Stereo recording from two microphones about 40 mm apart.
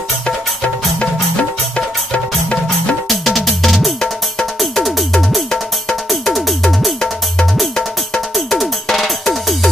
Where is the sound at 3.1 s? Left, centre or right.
Centre.